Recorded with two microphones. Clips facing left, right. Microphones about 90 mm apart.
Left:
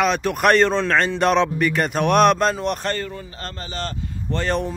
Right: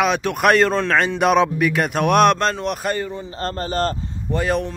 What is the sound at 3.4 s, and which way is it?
Speech, 45° right (ahead or behind).